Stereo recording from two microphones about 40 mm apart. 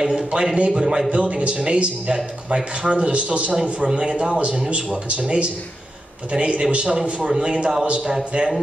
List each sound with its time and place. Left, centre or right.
0.0 s a man's voice: centre
1.1 s a man's voice: right
3.8 s a man's voice: right
7.2 s a man's voice: centre